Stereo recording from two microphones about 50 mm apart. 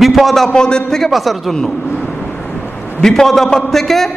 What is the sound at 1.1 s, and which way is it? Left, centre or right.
Speech, centre.